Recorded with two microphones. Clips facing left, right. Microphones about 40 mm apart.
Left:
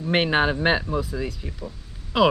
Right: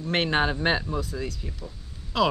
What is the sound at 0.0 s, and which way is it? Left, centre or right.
Speech, centre.